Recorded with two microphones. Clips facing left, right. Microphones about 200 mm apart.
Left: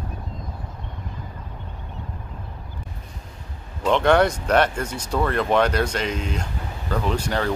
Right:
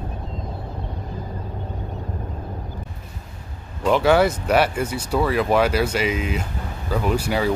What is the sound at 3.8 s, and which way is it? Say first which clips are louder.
Speech: right 1 dB; 5° right (ahead or behind).